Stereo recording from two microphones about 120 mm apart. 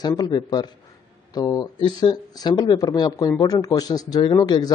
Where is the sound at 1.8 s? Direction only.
40° left (ahead or behind).